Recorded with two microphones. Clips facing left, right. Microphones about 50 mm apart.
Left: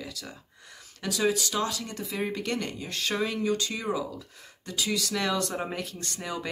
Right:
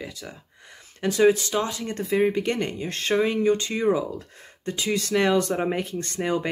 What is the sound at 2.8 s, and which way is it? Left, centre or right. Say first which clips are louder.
Speech: right 4 dB; right.